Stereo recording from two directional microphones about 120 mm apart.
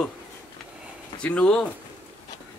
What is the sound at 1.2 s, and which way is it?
Speech, 10° left (ahead or behind).